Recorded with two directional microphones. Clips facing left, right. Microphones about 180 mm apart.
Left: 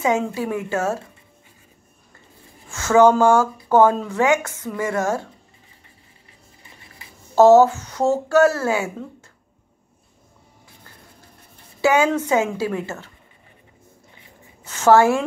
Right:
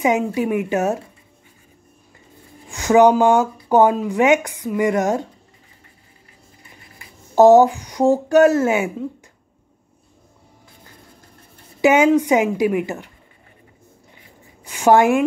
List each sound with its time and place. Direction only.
0.2 s speech: 15° right (ahead or behind)
2.7 s speech: 15° right (ahead or behind)
7.3 s speech: 15° right (ahead or behind)
11.8 s a woman's voice: 20° right (ahead or behind)
14.6 s speech: 15° right (ahead or behind)